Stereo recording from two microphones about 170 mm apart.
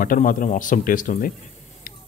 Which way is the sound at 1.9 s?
55° left (ahead or behind).